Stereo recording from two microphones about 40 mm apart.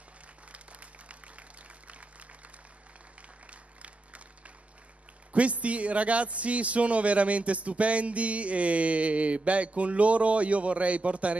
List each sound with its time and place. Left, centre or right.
0.5 s applause: right
3.2 s applause: right
5.3 s a man's voice: right